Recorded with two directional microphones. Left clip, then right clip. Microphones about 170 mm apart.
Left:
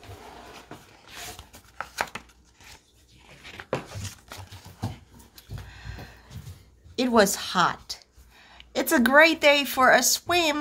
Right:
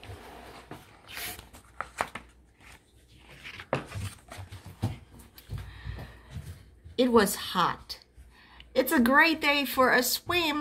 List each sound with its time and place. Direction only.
1.8 s chopping: 40° left (ahead or behind)
5.3 s a sound: 35° left (ahead or behind)
7.0 s a woman's voice: 40° left (ahead or behind)